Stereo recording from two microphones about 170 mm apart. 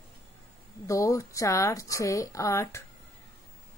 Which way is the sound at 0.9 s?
20° left (ahead or behind).